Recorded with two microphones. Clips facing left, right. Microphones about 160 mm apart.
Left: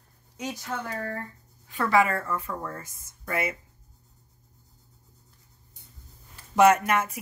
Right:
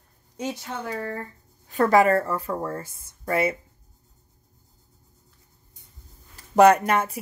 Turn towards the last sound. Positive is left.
turn(degrees=-30)  # may be behind; listen again after turning